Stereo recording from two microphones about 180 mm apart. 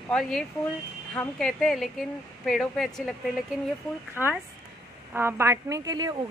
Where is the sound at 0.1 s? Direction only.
5° left (ahead or behind).